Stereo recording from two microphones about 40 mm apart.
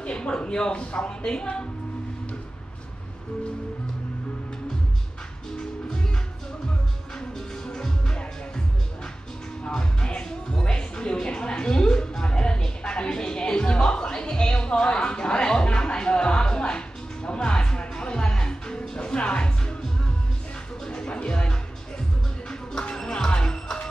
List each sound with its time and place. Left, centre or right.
0.0 s speech: left
7.2 s music: centre
9.7 s music: left
20.8 s music: centre